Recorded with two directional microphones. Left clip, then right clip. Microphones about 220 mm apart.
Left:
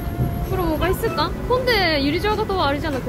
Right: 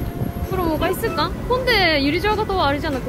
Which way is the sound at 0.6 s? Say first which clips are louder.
Right 1 dB; 20° right (ahead or behind).